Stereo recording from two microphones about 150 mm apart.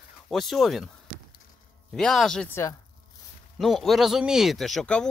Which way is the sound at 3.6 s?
Centre (ahead or behind).